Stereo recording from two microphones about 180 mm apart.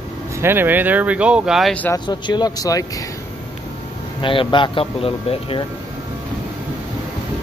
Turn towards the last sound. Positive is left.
turn(degrees=30)  # may be behind; listen again after turning